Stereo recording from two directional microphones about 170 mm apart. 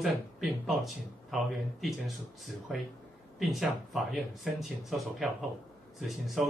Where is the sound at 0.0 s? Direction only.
Centre (ahead or behind).